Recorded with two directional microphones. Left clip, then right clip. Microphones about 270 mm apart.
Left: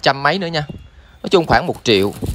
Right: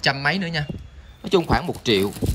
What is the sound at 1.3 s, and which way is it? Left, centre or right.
Speech, centre.